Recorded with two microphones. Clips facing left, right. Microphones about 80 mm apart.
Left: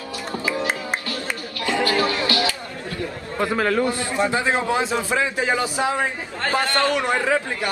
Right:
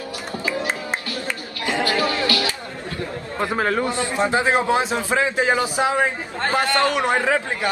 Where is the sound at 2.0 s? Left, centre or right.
Left.